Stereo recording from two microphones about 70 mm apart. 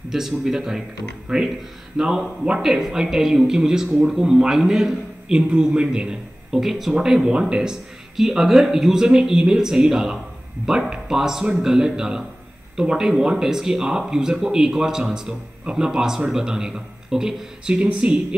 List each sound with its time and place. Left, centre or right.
0.1 s speech: centre